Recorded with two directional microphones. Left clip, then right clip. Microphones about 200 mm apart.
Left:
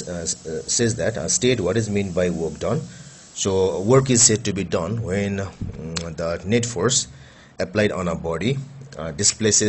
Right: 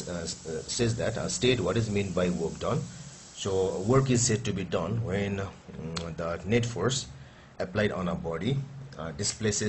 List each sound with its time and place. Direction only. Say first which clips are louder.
0.2 s a man's voice: left 7 dB; 20° left (ahead or behind)